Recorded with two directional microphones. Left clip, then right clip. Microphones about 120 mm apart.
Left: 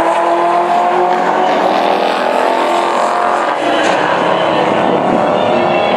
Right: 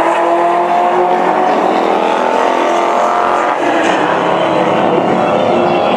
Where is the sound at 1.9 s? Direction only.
35° left (ahead or behind); by 4.7 s 10° left (ahead or behind).